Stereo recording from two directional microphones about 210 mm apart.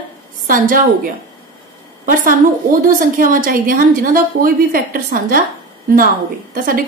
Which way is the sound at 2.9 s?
40° right (ahead or behind).